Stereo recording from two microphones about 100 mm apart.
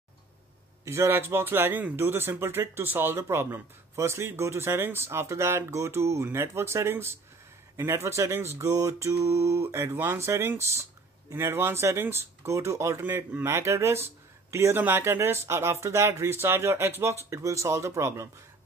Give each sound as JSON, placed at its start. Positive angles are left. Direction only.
{"t": 0.8, "sound": "speech", "side_deg": -25}